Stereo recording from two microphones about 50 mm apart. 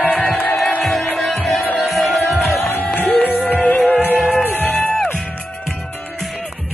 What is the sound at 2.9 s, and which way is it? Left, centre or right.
Music, left.